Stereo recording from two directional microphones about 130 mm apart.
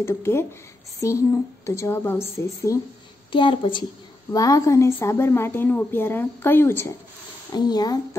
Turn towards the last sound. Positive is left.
turn(degrees=30)  # may be behind; listen again after turning